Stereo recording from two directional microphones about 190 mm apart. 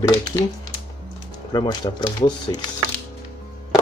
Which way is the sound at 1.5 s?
20° left (ahead or behind).